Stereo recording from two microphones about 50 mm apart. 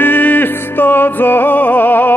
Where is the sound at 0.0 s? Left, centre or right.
Left.